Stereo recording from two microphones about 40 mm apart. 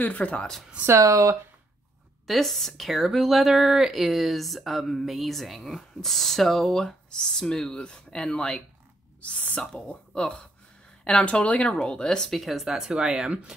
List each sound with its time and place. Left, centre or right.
0.0 s speech: left
2.2 s speech: centre
9.2 s speech: left
11.2 s speech: left
12.3 s speech: centre
12.6 s speech: centre